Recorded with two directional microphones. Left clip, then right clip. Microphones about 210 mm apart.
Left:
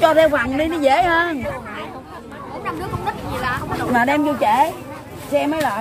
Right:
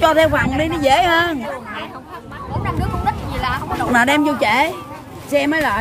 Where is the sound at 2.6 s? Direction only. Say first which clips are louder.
Right 3 dB; 30° right (ahead or behind).